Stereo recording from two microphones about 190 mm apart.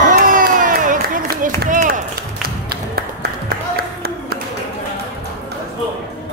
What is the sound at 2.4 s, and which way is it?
Music, 55° right (ahead or behind).